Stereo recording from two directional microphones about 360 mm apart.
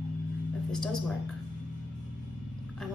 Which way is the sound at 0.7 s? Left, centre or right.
Centre.